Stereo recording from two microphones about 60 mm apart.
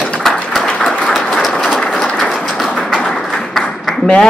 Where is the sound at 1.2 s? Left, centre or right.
Centre.